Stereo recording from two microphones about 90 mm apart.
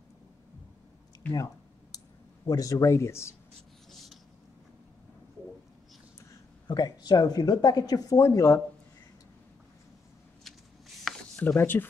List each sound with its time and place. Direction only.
1.3 s a sound: 40° left (ahead or behind)
2.4 s a man's voice: 40° left (ahead or behind)
6.7 s speech: 50° left (ahead or behind)
10.4 s shuffling cards: centre (ahead or behind)
11.3 s speech: 20° left (ahead or behind)